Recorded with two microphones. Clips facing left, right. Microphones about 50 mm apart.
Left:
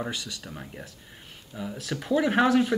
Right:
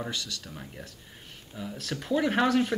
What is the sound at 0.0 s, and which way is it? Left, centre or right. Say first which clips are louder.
Speech: left 2 dB; centre.